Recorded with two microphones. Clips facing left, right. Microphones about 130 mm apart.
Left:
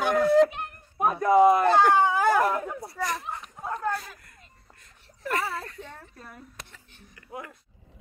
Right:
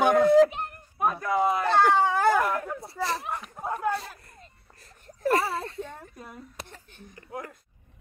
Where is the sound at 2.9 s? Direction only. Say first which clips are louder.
Right 2 dB; 30° right (ahead or behind).